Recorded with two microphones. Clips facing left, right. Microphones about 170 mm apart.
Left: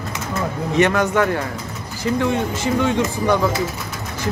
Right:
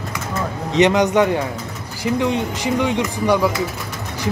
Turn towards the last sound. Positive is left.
turn(degrees=-10)  # may be behind; listen again after turning